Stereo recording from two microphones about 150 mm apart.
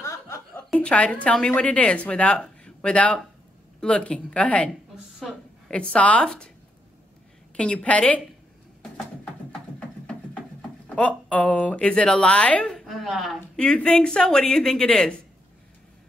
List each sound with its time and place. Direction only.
0.0 s chuckle: 20° left (ahead or behind)
0.7 s a woman's voice: 10° left (ahead or behind)
5.7 s a woman's voice: 10° left (ahead or behind)
7.5 s a woman's voice: 10° left (ahead or behind)
8.9 s music: 5° left (ahead or behind)
11.0 s a woman's voice: 10° left (ahead or behind)